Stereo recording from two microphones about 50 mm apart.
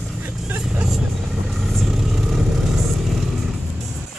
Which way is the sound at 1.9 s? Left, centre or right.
Centre.